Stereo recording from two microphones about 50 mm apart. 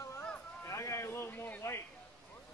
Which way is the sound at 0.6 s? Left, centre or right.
Left.